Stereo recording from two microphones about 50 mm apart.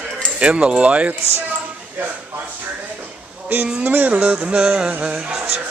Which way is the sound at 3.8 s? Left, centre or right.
Right.